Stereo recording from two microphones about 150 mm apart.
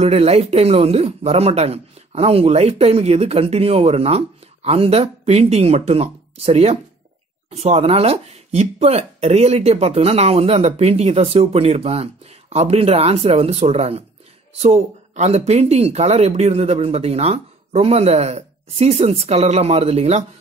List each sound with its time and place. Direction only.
0.0 s speech: 45° right (ahead or behind)